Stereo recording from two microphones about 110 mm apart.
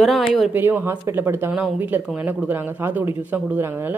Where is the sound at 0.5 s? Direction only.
20° right (ahead or behind).